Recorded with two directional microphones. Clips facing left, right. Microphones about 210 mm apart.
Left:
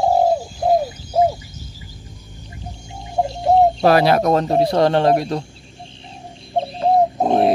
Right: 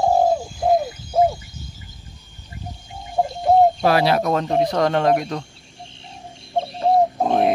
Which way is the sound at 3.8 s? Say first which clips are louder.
Left 3 dB; 45° left (ahead or behind).